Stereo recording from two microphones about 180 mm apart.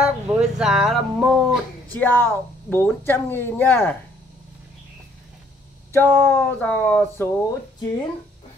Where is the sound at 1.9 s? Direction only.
10° left (ahead or behind).